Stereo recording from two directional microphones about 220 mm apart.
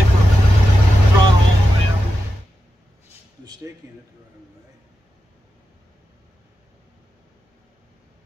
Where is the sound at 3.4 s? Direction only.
15° right (ahead or behind).